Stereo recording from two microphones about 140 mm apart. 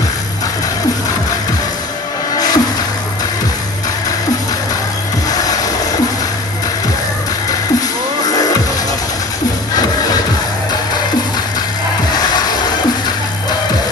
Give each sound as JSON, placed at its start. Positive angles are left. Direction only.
{"t": 2.3, "sound": "music", "side_deg": 30}